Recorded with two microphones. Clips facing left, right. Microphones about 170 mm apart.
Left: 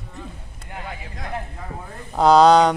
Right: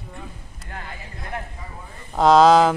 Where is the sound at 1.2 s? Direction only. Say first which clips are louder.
Left 1 dB; 60° left (ahead or behind).